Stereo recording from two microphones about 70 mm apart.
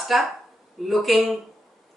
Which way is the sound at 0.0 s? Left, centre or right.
Centre.